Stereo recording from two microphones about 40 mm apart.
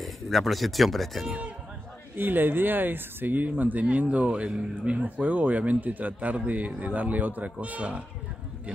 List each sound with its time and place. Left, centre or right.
0.0 s speech: centre
2.1 s a man's voice: right
5.0 s a man's voice: right